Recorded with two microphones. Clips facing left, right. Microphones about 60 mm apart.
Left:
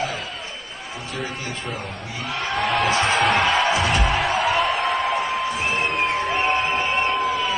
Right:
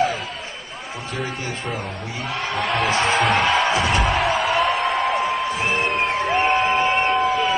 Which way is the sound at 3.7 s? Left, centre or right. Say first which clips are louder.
Right 1 dB; right.